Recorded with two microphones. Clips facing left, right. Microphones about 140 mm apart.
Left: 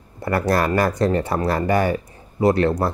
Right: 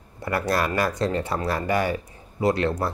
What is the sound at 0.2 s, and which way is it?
Speech, 50° left (ahead or behind).